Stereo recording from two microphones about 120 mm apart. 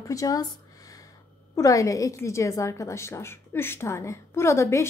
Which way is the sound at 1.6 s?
25° left (ahead or behind).